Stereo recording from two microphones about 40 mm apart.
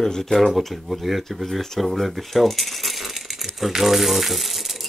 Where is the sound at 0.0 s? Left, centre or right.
Centre.